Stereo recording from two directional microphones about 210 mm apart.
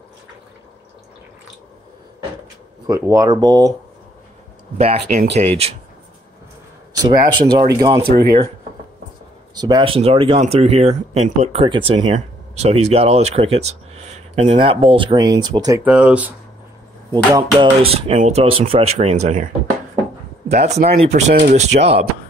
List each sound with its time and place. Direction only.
2.9 s speech: 15° right (ahead or behind)
4.7 s speech: 30° right (ahead or behind)
6.9 s a man's voice: 20° right (ahead or behind)
9.6 s speech: 20° right (ahead or behind)
15.8 s speech: 5° right (ahead or behind)
17.1 s speech: 20° right (ahead or behind)
20.4 s speech: 30° right (ahead or behind)